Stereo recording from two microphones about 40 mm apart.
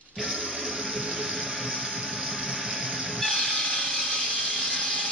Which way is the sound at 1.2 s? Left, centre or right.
Right.